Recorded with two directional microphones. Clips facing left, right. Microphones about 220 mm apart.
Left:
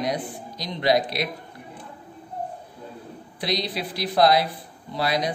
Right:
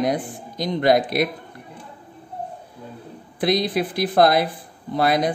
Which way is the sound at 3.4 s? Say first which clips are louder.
Right 7 dB; 50° right (ahead or behind).